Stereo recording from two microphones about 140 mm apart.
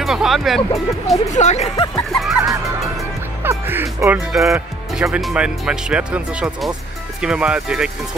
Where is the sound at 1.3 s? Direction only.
55° left (ahead or behind).